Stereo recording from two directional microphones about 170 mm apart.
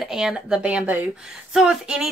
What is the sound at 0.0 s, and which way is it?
Speech, 5° right (ahead or behind).